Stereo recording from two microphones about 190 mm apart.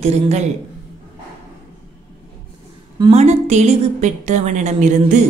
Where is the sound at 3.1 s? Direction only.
35° right (ahead or behind).